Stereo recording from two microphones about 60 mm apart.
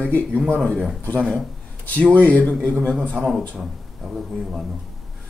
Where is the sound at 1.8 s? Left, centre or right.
Left.